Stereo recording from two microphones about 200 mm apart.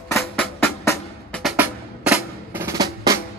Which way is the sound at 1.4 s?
5° right (ahead or behind).